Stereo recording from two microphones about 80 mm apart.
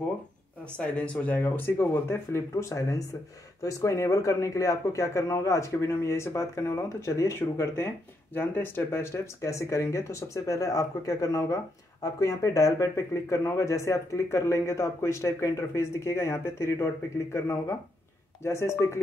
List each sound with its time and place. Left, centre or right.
0.7 s speech: centre; by 18.9 s left